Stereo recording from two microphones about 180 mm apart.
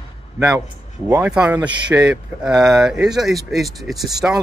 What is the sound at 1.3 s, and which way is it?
Speech, 5° right (ahead or behind).